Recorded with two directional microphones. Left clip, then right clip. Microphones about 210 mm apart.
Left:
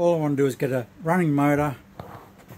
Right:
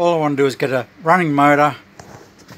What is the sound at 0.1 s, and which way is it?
Speech, 5° left (ahead or behind).